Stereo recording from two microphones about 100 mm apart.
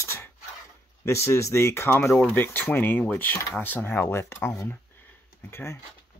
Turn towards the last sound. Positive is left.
turn(degrees=25)  # may be behind; listen again after turning